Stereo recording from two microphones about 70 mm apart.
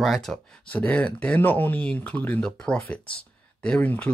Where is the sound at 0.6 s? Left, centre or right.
Centre.